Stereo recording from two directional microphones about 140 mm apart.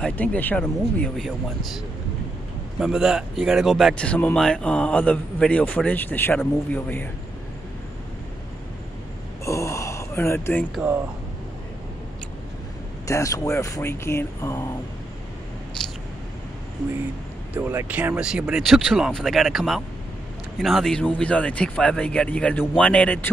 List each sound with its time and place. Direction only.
0.0 s speech: 10° left (ahead or behind)
2.8 s speech: 5° right (ahead or behind)
9.4 s gasp: 20° left (ahead or behind)
13.0 s speech: 25° left (ahead or behind)
15.8 s a sound: 5° left (ahead or behind)
17.6 s speech: 15° right (ahead or behind); by 23.3 s 10° left (ahead or behind)